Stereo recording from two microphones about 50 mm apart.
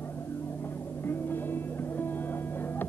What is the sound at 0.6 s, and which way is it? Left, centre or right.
Music, left.